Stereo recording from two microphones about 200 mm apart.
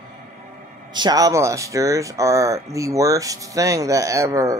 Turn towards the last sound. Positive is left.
turn(degrees=-15)  # may be behind; listen again after turning